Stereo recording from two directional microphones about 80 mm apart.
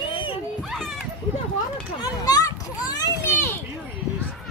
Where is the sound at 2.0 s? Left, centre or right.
Left.